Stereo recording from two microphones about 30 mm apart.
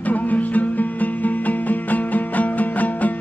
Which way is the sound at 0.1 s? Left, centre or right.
Left.